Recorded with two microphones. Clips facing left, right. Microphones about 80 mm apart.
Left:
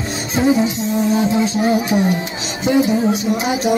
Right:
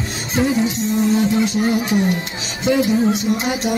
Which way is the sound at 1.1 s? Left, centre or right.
Centre.